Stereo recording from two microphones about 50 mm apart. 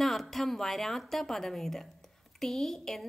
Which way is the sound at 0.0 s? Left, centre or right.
Centre.